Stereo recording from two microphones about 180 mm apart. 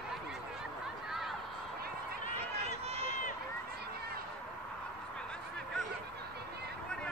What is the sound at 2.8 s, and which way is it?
Run, 35° right (ahead or behind).